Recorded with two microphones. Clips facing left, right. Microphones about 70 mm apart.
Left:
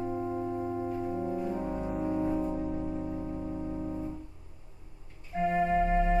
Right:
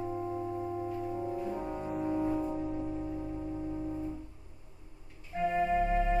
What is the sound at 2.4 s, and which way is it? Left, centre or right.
Music, centre.